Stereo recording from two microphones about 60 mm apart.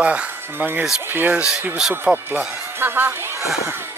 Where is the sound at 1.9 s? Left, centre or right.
Right.